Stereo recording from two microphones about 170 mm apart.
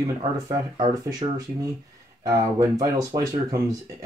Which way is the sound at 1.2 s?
35° right (ahead or behind).